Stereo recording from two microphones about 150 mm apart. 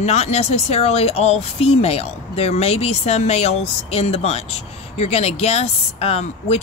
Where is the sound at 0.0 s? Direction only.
45° left (ahead or behind).